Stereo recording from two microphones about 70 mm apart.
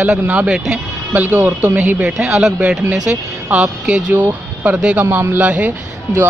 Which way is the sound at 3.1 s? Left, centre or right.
Right.